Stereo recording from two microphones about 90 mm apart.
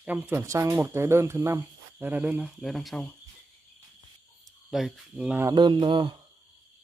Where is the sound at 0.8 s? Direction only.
30° right (ahead or behind).